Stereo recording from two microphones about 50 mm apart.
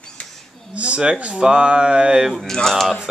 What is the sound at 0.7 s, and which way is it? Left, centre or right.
Speech, right.